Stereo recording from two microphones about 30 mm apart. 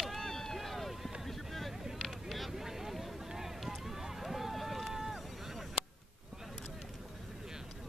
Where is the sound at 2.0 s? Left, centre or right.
Centre.